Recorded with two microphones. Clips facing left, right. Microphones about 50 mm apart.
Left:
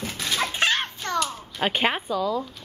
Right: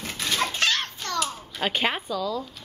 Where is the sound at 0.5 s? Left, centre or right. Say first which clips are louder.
Left 2 dB; left.